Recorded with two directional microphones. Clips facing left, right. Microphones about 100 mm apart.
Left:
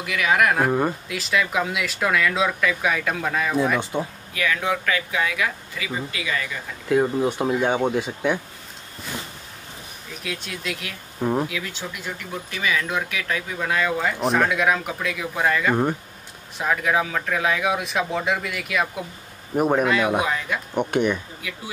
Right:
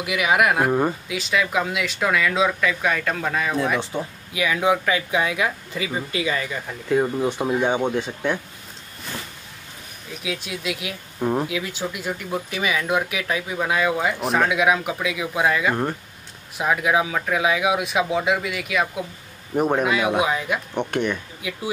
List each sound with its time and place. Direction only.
0.0 s speech: 15° right (ahead or behind)
4.3 s speech: 15° right (ahead or behind)
6.9 s speech: centre (ahead or behind)
10.2 s speech: 5° right (ahead or behind)
11.1 s speech: centre (ahead or behind)
11.4 s speech: 20° right (ahead or behind)
15.7 s speech: 5° left (ahead or behind)
16.5 s speech: 10° right (ahead or behind)
19.8 s speech: 10° right (ahead or behind)
20.7 s speech: 10° left (ahead or behind)